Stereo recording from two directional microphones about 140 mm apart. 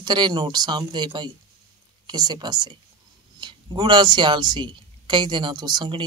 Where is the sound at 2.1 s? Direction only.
30° right (ahead or behind).